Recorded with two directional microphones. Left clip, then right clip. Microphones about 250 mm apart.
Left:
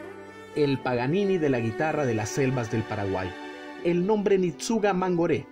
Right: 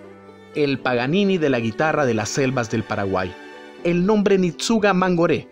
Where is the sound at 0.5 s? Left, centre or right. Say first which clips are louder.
Right 5 dB; right.